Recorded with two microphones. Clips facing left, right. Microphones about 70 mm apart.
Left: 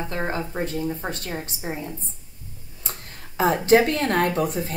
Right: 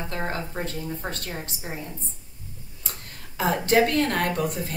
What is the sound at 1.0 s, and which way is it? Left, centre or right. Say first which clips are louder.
Speech: left 2 dB; centre.